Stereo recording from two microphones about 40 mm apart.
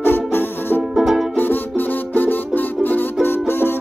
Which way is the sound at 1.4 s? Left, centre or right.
Left.